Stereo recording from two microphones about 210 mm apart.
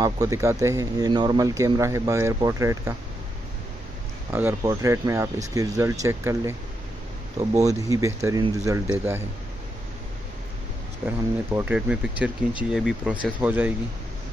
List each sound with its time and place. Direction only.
0.0 s speech: 15° right (ahead or behind)
4.3 s speech: 10° right (ahead or behind)
7.6 s speech: 15° right (ahead or behind)
11.1 s speech: 10° right (ahead or behind)